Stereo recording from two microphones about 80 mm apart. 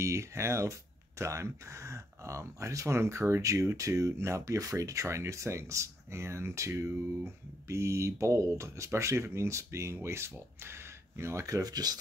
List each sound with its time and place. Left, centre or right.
0.0 s speech: right